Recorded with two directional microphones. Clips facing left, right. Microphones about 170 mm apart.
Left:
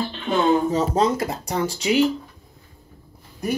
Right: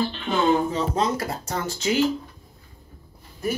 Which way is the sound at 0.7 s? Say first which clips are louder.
Left 4 dB; 40° left (ahead or behind).